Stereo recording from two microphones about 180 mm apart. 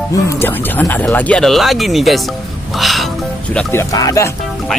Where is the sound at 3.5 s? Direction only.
15° left (ahead or behind).